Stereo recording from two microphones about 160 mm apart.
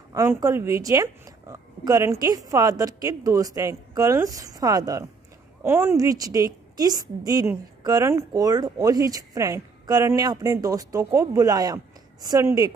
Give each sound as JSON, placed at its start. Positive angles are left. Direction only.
{"t": 0.1, "sound": "a woman's voice", "side_deg": -20}